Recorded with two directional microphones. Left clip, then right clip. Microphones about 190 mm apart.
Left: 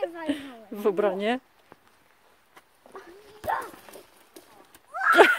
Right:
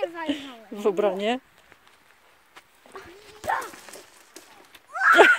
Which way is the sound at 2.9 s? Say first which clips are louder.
Right 2 dB; 20° right (ahead or behind).